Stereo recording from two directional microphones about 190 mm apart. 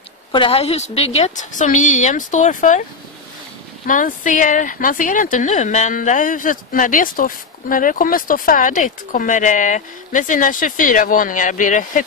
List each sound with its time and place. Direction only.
0.3 s a woman's voice: 30° left (ahead or behind)
3.8 s speech: 45° left (ahead or behind)